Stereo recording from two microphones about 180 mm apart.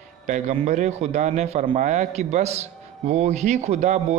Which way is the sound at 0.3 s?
40° right (ahead or behind).